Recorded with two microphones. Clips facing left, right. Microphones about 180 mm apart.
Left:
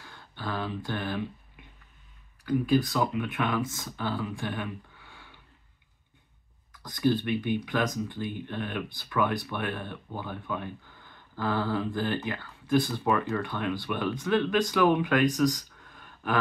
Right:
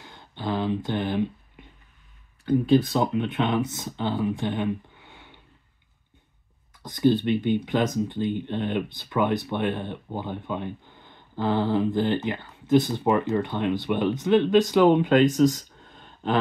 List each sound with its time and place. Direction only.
0.0 s a sound: 20° right (ahead or behind)
2.4 s speech: 25° right (ahead or behind)
6.7 s speech: 25° right (ahead or behind)